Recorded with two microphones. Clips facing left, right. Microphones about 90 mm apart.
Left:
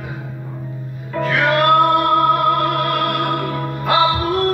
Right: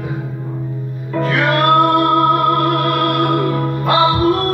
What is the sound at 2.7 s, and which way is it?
Music, 35° right (ahead or behind).